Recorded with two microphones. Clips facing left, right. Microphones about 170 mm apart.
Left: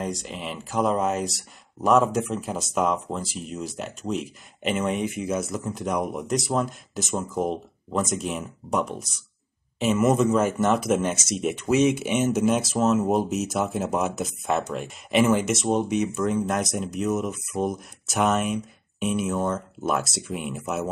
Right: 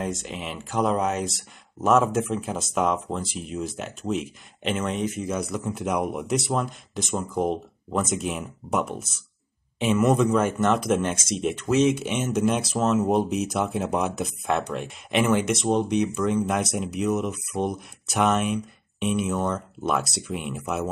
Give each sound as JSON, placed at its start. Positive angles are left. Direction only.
{"t": 0.0, "sound": "speech", "side_deg": 0}
{"t": 5.0, "sound": "speech", "side_deg": 10}